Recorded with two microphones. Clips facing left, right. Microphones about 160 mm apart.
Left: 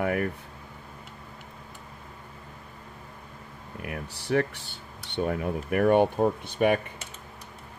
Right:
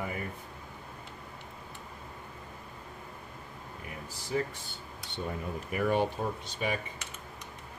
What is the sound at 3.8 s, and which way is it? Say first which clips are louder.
Speech: left 10 dB; 70° left (ahead or behind).